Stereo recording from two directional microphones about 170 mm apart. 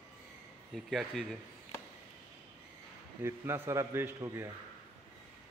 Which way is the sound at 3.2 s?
15° right (ahead or behind).